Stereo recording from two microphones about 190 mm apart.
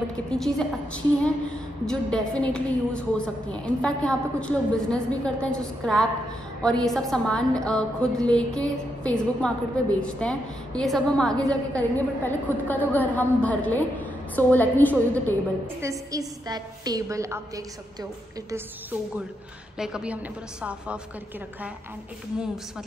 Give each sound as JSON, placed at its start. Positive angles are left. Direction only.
{"t": 0.3, "sound": "a woman's voice", "side_deg": 5}
{"t": 15.8, "sound": "a woman's voice", "side_deg": -15}
{"t": 18.5, "sound": "a woman's voice", "side_deg": -10}